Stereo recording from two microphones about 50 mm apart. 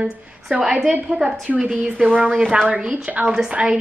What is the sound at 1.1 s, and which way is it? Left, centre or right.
A woman's voice, right.